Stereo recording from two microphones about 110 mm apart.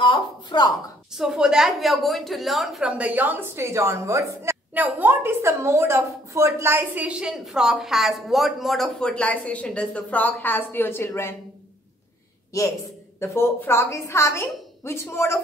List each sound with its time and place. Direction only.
0.0 s a sound: 45° left (ahead or behind)
1.1 s a woman's voice: 5° right (ahead or behind)
3.0 s a woman's voice: 15° right (ahead or behind); by 11.3 s 20° left (ahead or behind)
13.2 s a woman's voice: 25° left (ahead or behind)